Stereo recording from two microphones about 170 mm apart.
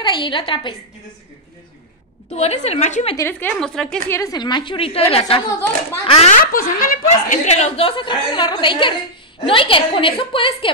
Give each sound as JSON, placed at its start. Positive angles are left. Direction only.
{"t": 0.0, "sound": "a woman's voice", "side_deg": 30}
{"t": 2.3, "sound": "speech", "side_deg": 40}
{"t": 3.2, "sound": "a woman's voice", "side_deg": 10}
{"t": 4.1, "sound": "a woman's voice", "side_deg": 20}
{"t": 6.3, "sound": "speech", "side_deg": 55}